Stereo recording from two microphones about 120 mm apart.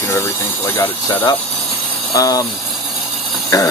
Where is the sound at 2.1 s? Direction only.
30° left (ahead or behind).